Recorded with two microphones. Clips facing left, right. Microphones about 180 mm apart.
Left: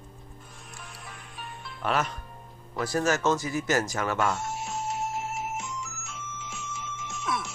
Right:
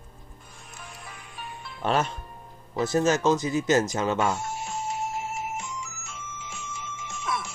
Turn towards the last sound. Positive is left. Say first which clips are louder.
# even
turn(degrees=0)  # may be behind; listen again after turning